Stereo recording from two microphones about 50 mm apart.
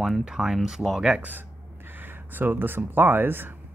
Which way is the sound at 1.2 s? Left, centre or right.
Right.